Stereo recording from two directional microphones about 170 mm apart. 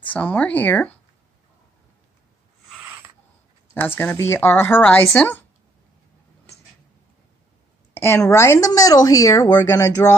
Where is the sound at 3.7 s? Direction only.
10° left (ahead or behind).